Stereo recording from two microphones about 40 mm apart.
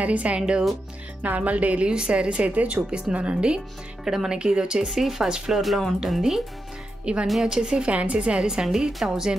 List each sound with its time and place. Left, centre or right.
0.0 s speech: right
1.9 s speech: right
4.0 s speech: centre
4.8 s speech: centre
7.1 s speech: right
7.4 s speech: centre
7.8 s speech: right
8.4 s a woman's voice: centre